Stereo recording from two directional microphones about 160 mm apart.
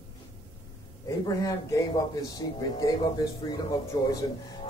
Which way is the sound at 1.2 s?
20° left (ahead or behind).